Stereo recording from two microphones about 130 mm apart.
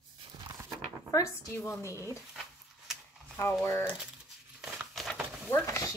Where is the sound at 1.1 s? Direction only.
25° left (ahead or behind).